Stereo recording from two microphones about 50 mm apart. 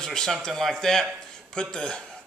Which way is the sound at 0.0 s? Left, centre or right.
Centre.